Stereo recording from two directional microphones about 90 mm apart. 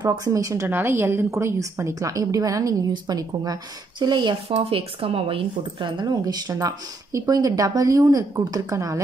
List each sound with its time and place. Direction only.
0.0 s a woman's voice: 45° right (ahead or behind)
0.7 s a woman's voice: 25° right (ahead or behind); by 4.4 s 55° right (ahead or behind)
4.5 s a woman's voice: 90° right; by 9.0 s 35° right (ahead or behind)